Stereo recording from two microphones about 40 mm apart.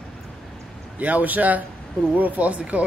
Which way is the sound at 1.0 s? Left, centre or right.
Right.